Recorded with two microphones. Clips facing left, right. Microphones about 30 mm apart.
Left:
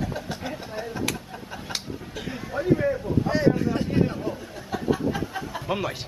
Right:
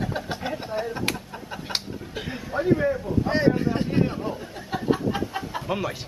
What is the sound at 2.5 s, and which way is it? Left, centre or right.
Speech, centre.